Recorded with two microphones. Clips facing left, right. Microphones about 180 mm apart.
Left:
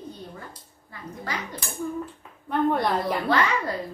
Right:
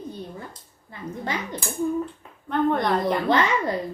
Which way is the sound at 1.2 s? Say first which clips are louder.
Right 3 dB; 25° right (ahead or behind).